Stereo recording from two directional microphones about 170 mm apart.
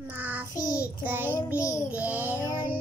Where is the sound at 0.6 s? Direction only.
20° left (ahead or behind).